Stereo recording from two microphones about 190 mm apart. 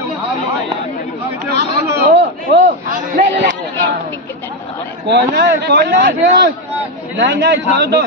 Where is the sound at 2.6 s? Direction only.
40° right (ahead or behind).